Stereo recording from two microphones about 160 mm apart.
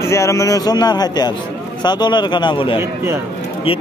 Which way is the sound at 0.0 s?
20° left (ahead or behind).